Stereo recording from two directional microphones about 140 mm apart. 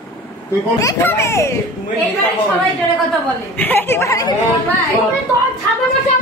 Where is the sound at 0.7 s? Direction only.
20° left (ahead or behind).